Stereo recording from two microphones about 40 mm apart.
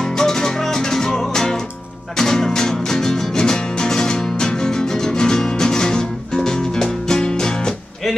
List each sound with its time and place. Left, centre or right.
0.0 s music: centre